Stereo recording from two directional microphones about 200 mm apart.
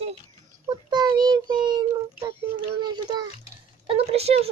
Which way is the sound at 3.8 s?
30° right (ahead or behind).